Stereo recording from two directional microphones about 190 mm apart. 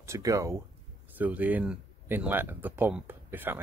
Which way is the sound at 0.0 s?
15° right (ahead or behind).